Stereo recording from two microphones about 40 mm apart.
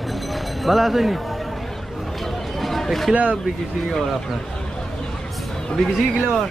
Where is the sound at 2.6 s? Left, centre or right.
Centre.